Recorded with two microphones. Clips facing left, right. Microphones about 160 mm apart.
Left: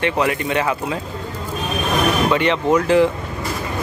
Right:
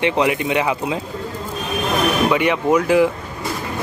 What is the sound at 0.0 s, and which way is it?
Speech, 15° right (ahead or behind).